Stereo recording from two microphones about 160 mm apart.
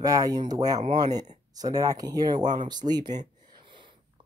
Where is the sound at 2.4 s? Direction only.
50° right (ahead or behind).